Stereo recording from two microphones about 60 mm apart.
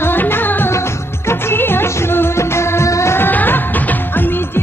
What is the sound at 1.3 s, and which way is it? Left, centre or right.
Music of bollywood, left.